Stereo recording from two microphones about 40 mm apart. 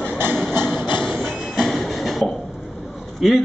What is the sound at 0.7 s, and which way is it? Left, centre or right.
Train, centre.